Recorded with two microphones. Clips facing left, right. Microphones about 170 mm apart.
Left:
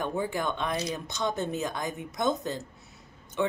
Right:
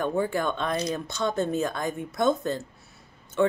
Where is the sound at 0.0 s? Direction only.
15° left (ahead or behind).